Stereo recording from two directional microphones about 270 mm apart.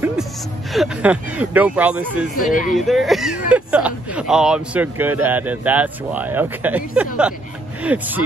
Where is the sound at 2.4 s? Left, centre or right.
Left.